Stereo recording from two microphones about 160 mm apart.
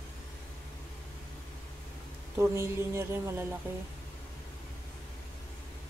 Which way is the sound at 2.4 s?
15° right (ahead or behind).